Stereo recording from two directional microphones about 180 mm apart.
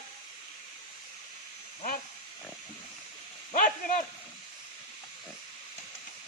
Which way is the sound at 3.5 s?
45° left (ahead or behind).